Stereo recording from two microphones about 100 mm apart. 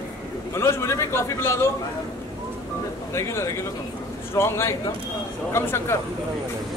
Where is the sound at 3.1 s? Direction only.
30° left (ahead or behind).